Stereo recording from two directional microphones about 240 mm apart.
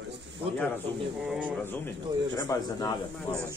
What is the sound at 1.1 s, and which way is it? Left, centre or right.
Speech, centre.